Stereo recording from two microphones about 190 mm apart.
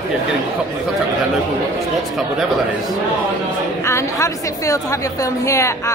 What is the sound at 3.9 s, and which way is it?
A woman's voice, 15° left (ahead or behind).